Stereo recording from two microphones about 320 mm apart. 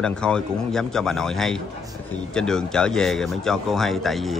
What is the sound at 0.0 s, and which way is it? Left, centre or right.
Speech, centre.